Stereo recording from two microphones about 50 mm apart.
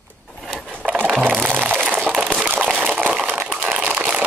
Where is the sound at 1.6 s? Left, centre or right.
Right.